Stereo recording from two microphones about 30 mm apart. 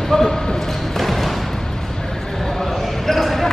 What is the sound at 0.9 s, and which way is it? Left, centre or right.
Music, centre.